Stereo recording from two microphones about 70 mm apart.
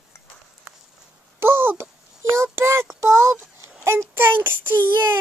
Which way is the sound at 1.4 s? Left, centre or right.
Right.